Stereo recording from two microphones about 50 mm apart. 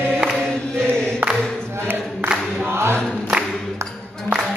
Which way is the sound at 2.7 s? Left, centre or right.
Right.